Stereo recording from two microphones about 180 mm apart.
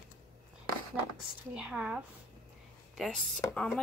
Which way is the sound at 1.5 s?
5° right (ahead or behind).